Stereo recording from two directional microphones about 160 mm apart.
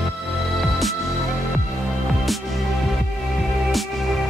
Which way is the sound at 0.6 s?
Centre (ahead or behind).